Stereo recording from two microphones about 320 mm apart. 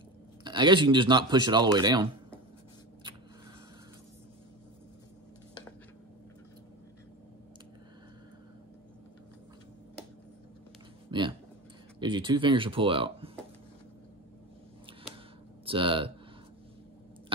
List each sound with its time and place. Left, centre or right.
0.4 s speech: centre
11.1 s a sound: centre
12.0 s speech: centre
15.6 s speech: centre